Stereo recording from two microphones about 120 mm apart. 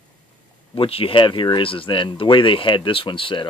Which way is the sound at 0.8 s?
50° left (ahead or behind).